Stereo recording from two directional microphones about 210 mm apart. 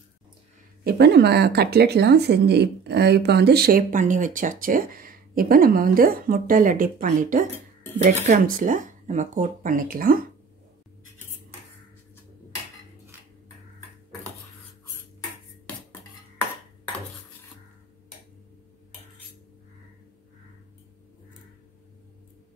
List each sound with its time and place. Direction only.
0.8 s speech: 55° right (ahead or behind)